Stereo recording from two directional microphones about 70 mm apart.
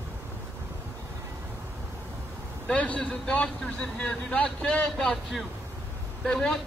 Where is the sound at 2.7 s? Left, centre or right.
Centre.